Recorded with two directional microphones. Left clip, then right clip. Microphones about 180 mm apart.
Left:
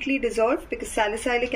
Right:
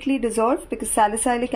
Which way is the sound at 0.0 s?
45° right (ahead or behind).